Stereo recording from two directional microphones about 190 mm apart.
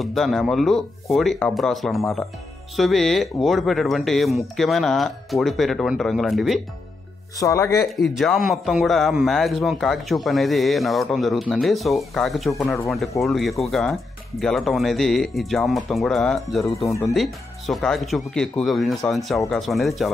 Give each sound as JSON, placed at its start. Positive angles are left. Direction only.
{"t": 0.0, "sound": "a man's voice", "side_deg": 0}
{"t": 7.3, "sound": "speech", "side_deg": 15}
{"t": 7.8, "sound": "a man's voice", "side_deg": 0}